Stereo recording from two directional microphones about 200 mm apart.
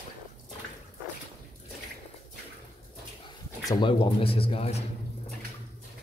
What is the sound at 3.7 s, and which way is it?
Speech, 25° left (ahead or behind).